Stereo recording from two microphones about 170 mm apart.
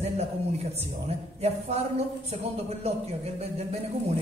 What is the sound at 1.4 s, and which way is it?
Speech, 40° right (ahead or behind).